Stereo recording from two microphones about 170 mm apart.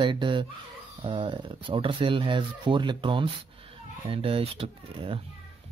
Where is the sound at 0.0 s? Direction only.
30° right (ahead or behind).